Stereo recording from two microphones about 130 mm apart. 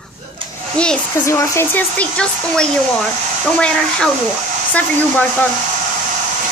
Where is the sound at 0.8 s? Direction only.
10° left (ahead or behind).